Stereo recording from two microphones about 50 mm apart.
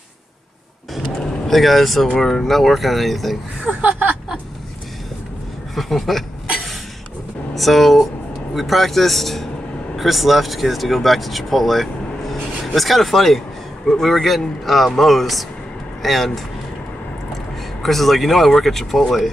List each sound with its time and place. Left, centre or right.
1.2 s vehicle: centre
2.0 s speech: centre
3.6 s a sound: right
5.8 s speech: centre
7.5 s speech: centre
17.8 s speech: centre